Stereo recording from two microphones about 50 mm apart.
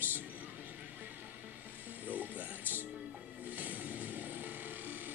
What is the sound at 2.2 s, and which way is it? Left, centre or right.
Music, right.